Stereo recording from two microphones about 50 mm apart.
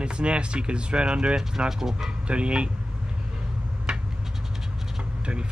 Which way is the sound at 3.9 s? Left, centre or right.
Centre.